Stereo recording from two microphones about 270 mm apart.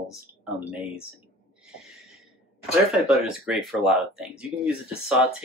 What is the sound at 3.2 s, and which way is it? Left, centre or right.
Speech, centre.